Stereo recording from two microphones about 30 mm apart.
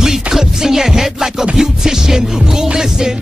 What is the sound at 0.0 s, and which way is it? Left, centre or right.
Music, centre.